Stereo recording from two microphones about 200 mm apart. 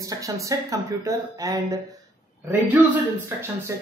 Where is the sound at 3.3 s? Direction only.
10° right (ahead or behind).